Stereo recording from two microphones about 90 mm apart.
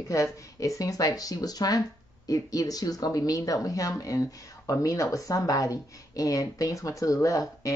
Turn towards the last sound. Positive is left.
turn(degrees=35)  # may be behind; listen again after turning